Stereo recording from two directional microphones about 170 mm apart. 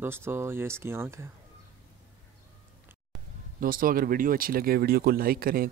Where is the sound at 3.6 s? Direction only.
55° right (ahead or behind).